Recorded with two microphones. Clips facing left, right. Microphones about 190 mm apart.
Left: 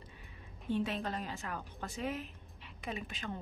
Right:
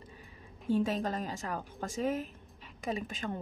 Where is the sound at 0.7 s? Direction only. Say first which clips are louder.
Right 5 dB; 40° right (ahead or behind).